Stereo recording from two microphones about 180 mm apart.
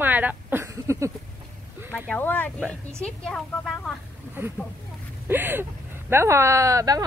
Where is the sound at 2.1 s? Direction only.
10° left (ahead or behind).